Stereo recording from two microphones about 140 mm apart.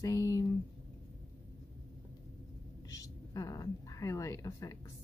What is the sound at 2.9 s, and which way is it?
Speech, 25° left (ahead or behind).